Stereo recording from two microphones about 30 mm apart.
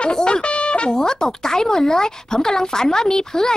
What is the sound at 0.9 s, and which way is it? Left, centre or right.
Speech, left.